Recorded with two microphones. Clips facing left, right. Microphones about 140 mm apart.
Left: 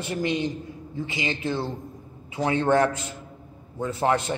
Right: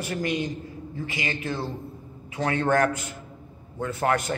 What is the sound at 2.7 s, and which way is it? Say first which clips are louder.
A man's voice: left 2 dB; 25° left (ahead or behind).